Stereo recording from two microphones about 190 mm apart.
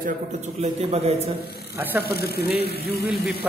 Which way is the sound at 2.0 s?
55° left (ahead or behind).